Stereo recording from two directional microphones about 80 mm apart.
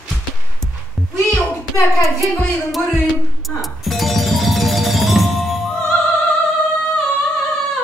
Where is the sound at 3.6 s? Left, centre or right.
Centre.